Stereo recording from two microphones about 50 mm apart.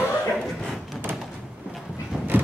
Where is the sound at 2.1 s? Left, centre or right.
Centre.